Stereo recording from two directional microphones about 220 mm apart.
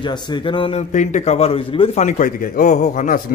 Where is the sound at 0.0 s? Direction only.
20° left (ahead or behind).